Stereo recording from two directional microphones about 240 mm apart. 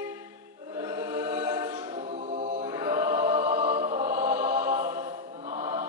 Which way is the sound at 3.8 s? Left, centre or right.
Right.